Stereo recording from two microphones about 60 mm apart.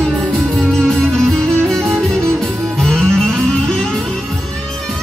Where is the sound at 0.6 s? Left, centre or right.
Centre.